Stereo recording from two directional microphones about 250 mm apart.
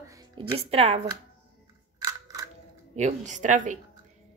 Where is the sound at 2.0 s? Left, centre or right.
Centre.